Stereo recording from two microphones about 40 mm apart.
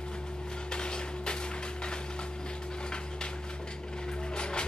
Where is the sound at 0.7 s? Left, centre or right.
Left.